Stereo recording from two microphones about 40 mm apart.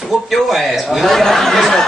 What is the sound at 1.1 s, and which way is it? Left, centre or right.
Speech, centre.